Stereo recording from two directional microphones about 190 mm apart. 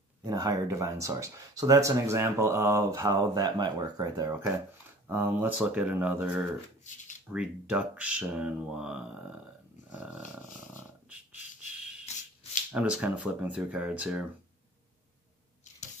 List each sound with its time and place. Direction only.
0.2 s speech: 20° right (ahead or behind)
12.7 s speech: 5° right (ahead or behind)